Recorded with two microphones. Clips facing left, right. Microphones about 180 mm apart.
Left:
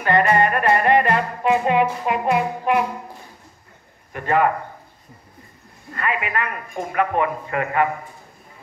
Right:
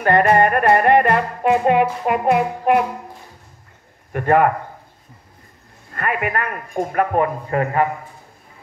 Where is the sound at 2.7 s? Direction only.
50° right (ahead or behind).